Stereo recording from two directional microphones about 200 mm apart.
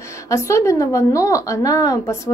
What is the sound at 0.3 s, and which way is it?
A woman's voice, 15° left (ahead or behind).